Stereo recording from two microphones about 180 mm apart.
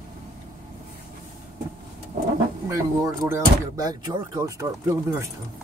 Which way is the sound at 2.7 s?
15° right (ahead or behind).